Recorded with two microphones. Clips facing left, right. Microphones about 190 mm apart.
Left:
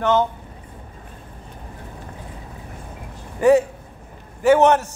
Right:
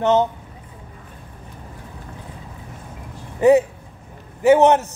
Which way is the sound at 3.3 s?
20° right (ahead or behind).